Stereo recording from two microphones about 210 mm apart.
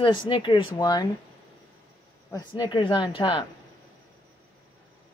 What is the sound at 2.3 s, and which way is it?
Speech, 20° left (ahead or behind).